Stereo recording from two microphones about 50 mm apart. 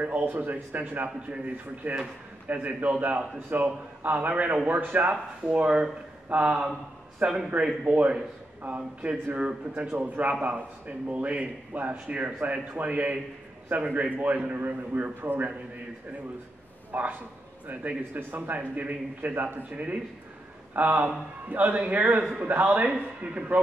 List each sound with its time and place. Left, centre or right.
0.0 s a man's voice: right
16.9 s a man's voice: right
19.7 s a man's voice: right
22.8 s speech: right